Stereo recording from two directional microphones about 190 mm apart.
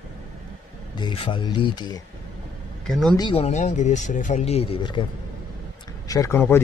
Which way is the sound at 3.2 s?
30° left (ahead or behind).